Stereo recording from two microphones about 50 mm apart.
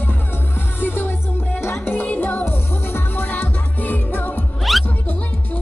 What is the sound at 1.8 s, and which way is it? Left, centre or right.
Music, left.